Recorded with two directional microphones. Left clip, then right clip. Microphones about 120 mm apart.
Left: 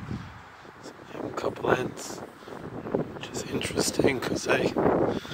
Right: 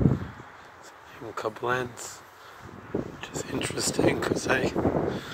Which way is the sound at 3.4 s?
30° left (ahead or behind).